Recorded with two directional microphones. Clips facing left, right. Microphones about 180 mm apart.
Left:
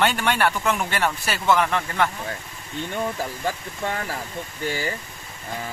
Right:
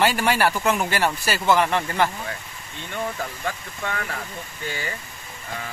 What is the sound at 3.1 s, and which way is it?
Speech, 30° left (ahead or behind).